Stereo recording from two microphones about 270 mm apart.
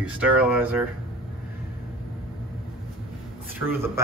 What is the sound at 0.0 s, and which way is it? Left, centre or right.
Speech, centre.